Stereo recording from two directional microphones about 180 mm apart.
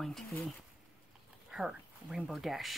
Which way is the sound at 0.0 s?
Centre (ahead or behind).